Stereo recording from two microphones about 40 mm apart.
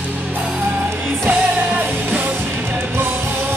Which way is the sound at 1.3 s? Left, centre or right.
Right.